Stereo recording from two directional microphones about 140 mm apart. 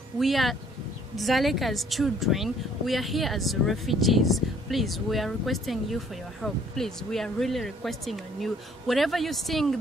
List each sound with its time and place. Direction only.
0.2 s speech: centre (ahead or behind)